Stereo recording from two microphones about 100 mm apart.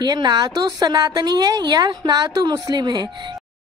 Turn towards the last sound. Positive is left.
turn(degrees=-45)  # may be behind; listen again after turning